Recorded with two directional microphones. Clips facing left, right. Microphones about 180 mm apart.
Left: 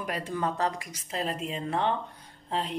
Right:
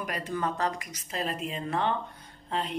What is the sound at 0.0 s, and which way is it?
Speech, 25° left (ahead or behind).